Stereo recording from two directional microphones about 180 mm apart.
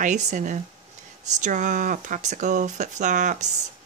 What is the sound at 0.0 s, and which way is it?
Speech, 45° right (ahead or behind).